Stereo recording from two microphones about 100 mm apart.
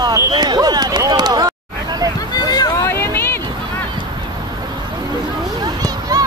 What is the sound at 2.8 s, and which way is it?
Vehicle, 25° left (ahead or behind).